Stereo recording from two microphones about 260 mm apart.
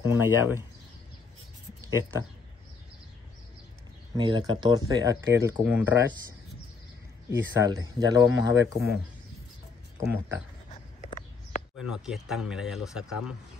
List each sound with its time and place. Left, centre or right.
0.0 s speech: centre
1.9 s speech: centre
4.2 s speech: centre
7.2 s speech: centre
10.0 s speech: centre
10.7 s a sound: left
11.8 s speech: centre